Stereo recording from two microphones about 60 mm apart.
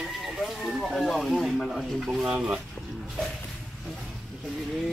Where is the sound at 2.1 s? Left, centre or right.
Centre.